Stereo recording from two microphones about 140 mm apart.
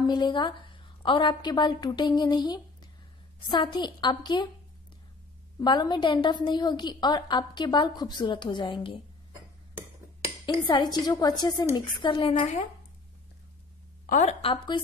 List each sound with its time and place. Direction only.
0.0 s a woman's voice: 30° left (ahead or behind)
5.6 s a woman's voice: 30° left (ahead or behind)
10.4 s a woman's voice: 35° left (ahead or behind)
12.4 s speech: 55° left (ahead or behind)
14.2 s a woman's voice: 40° left (ahead or behind)